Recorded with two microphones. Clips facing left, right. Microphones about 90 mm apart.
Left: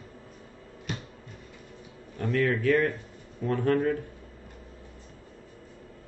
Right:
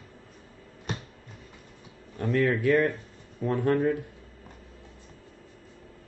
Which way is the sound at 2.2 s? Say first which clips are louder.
Right 1 dB; 30° right (ahead or behind).